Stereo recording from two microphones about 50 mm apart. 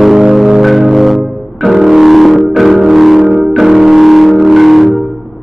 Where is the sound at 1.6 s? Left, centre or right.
Centre.